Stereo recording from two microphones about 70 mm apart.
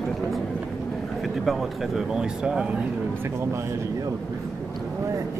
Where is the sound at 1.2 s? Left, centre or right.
Centre.